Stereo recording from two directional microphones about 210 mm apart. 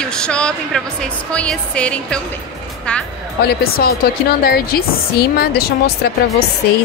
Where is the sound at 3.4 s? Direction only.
50° left (ahead or behind).